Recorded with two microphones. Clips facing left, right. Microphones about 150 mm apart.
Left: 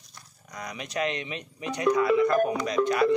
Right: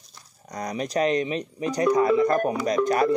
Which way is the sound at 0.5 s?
40° right (ahead or behind).